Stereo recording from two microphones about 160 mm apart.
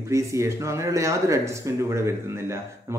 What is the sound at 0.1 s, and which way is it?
Speech, 20° right (ahead or behind).